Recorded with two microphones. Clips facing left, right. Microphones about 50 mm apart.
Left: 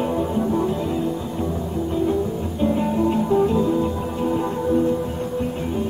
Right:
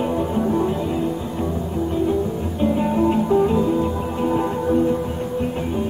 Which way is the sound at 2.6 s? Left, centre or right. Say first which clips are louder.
Right 1 dB; centre.